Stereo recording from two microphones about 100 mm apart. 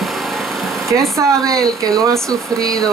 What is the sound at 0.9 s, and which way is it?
Speech, 30° right (ahead or behind).